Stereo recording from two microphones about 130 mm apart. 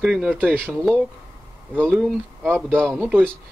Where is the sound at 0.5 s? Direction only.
5° left (ahead or behind).